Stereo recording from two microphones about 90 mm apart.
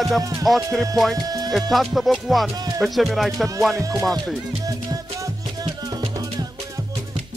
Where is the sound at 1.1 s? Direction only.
45° right (ahead or behind).